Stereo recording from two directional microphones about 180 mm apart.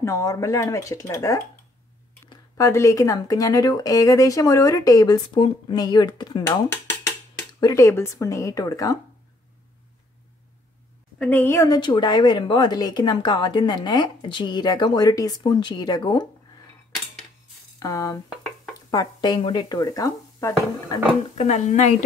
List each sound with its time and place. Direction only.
0.0 s speech: 15° left (ahead or behind)
11.1 s speech: 10° left (ahead or behind); by 16.3 s 25° left (ahead or behind)
17.7 s speech: 20° left (ahead or behind)
21.4 s speech: 40° left (ahead or behind)